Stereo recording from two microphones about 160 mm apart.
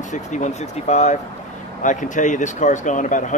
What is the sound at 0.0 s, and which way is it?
Speech, 50° left (ahead or behind).